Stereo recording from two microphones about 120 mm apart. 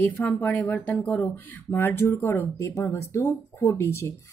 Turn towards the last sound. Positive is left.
turn(degrees=20)  # may be behind; listen again after turning